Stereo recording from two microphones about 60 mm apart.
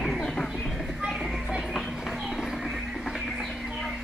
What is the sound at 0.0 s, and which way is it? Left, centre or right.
Music, centre.